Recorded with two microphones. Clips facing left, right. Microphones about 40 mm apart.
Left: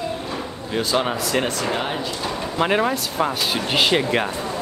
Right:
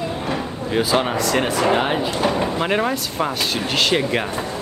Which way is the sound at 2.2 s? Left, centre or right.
Right.